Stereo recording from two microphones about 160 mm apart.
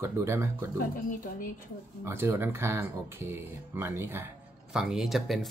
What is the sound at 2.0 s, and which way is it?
Speech, 15° right (ahead or behind).